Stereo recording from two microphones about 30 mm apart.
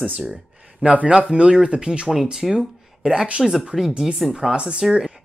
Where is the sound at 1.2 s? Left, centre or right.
Right.